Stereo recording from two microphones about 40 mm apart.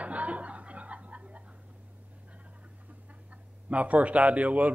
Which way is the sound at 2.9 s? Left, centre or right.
Right.